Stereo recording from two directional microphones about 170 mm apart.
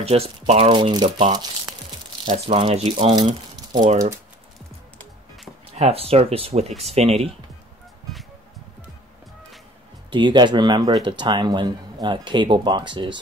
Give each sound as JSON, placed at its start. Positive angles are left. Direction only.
{"t": 0.0, "sound": "speech", "side_deg": -35}
{"t": 2.3, "sound": "speech", "side_deg": -35}
{"t": 3.2, "sound": "crumpling", "side_deg": -25}
{"t": 3.8, "sound": "speech", "side_deg": -45}
{"t": 5.8, "sound": "speech", "side_deg": -35}
{"t": 10.0, "sound": "speech", "side_deg": -30}